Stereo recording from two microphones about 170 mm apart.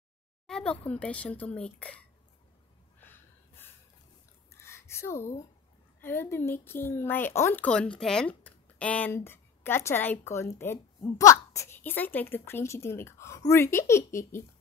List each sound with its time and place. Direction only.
0.5 s speech: 5° left (ahead or behind)
3.0 s a sound: 10° left (ahead or behind)
5.9 s speech: 15° left (ahead or behind)